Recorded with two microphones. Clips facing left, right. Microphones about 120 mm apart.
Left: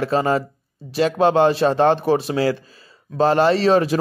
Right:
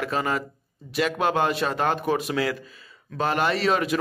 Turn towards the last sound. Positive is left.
turn(degrees=30)  # may be behind; listen again after turning